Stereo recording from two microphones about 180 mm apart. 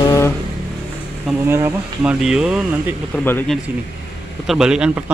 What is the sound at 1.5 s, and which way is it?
Speech, 15° right (ahead or behind).